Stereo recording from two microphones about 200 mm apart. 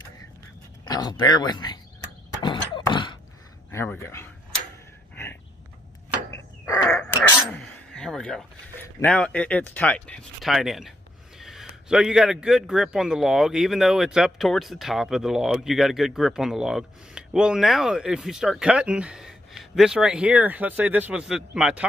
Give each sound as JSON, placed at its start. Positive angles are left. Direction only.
{"t": 0.8, "sound": "speech", "side_deg": 20}
{"t": 2.4, "sound": "a sound", "side_deg": 20}
{"t": 3.7, "sound": "speech", "side_deg": 10}
{"t": 5.1, "sound": "a sound", "side_deg": 10}
{"t": 6.3, "sound": "crow", "side_deg": 15}
{"t": 7.5, "sound": "a man's voice", "side_deg": 5}